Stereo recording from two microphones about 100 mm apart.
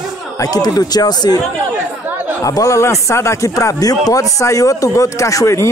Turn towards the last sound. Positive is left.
turn(degrees=30)  # may be behind; listen again after turning